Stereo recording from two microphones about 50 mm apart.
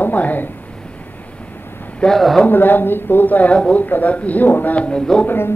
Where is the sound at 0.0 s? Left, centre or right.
Left.